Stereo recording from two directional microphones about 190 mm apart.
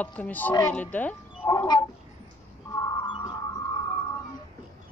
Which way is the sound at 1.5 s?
20° left (ahead or behind).